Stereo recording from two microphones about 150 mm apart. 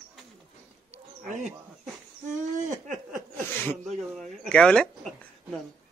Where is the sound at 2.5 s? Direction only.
60° right (ahead or behind).